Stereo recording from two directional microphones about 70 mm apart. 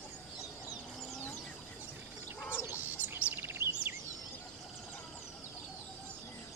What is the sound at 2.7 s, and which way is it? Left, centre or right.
Bird, right.